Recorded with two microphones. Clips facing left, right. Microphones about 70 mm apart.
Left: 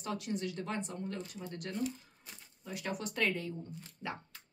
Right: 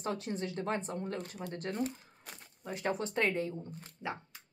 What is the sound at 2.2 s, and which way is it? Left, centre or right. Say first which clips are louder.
Crumpling: right 4 dB; right.